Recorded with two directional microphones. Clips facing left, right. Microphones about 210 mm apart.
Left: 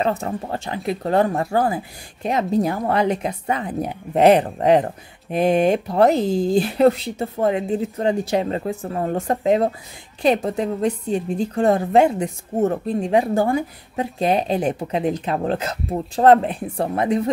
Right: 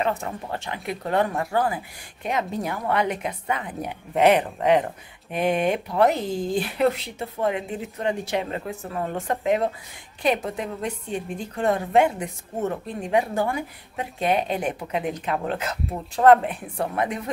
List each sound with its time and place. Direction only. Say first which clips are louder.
0.0 s a woman's voice: left 4 dB; 35° left (ahead or behind)